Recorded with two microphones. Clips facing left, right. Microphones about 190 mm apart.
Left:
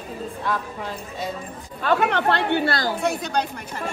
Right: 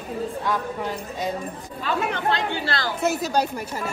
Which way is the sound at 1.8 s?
65° left (ahead or behind).